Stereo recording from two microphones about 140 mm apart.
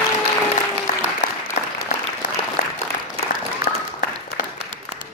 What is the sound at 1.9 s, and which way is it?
Applause, 55° left (ahead or behind).